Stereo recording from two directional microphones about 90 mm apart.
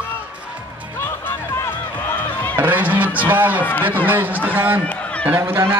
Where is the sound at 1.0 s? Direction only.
25° left (ahead or behind).